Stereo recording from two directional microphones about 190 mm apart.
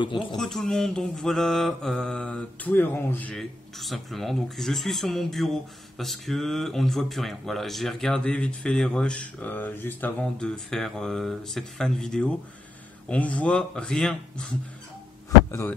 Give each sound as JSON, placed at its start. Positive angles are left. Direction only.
{"t": 0.0, "sound": "speech", "side_deg": 25}
{"t": 0.4, "sound": "mantra", "side_deg": 0}